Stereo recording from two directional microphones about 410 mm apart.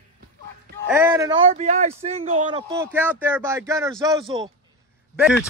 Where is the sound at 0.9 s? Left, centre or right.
Centre.